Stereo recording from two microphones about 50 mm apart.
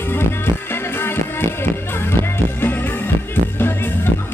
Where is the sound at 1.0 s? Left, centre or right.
Left.